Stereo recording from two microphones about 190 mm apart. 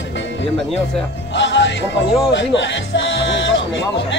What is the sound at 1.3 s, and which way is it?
Music, 70° left (ahead or behind).